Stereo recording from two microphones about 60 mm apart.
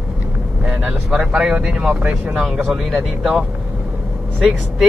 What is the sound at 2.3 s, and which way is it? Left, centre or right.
Speech, centre.